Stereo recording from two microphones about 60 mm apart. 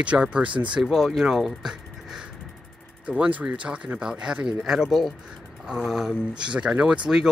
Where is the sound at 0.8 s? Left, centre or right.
Centre.